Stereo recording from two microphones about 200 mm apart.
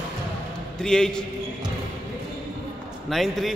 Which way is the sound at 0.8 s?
5° left (ahead or behind).